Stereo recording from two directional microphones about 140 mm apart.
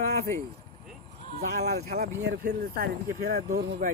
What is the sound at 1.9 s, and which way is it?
Speech, 90° right.